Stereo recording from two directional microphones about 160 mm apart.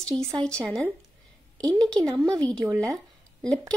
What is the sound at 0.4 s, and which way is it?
Speech, 5° left (ahead or behind).